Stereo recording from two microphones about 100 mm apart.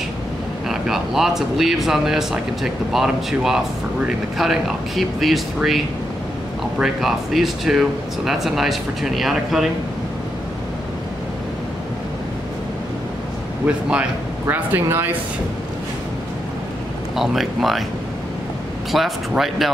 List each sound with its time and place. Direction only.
0.7 s speech: 5° right (ahead or behind)
6.8 s speech: 5° right (ahead or behind)
13.7 s speech: 10° right (ahead or behind)
14.4 s speech: 20° right (ahead or behind)
17.1 s speech: 5° right (ahead or behind)
18.9 s speech: centre (ahead or behind)